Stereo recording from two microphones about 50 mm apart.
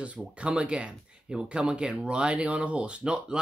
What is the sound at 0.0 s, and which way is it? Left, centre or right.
Speech, right.